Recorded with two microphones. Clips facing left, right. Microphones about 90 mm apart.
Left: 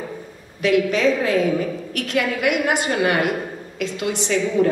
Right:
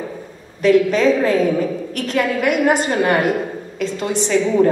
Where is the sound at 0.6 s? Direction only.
40° right (ahead or behind).